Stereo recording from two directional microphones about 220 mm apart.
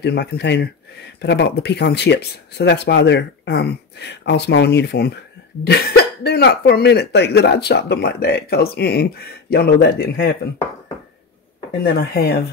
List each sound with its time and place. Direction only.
0.0 s speech: 50° left (ahead or behind)
11.9 s speech: 45° left (ahead or behind)